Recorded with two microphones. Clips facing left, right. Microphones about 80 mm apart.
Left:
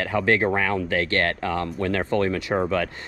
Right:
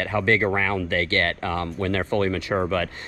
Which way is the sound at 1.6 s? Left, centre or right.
Right.